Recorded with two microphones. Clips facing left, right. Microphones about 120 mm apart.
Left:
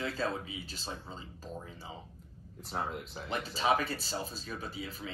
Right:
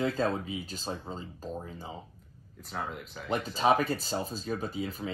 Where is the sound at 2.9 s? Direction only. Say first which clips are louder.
Even; 35° left (ahead or behind).